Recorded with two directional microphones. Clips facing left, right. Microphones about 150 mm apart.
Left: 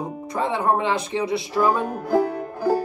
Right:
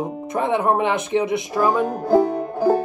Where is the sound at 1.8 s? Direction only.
35° right (ahead or behind).